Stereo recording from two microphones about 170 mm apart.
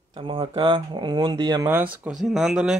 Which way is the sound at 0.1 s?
30° right (ahead or behind).